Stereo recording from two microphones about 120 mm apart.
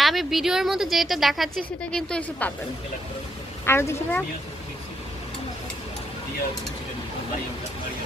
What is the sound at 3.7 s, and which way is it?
Speech, 20° left (ahead or behind).